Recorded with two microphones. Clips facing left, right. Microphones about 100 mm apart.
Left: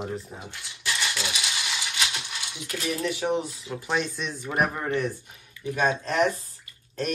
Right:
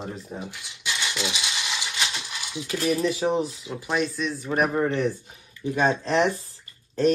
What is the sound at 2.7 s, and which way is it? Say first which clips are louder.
Speech: right 5 dB; 30° right (ahead or behind).